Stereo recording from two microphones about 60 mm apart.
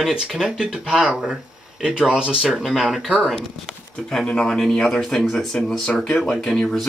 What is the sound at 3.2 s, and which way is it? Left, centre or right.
Speech, centre.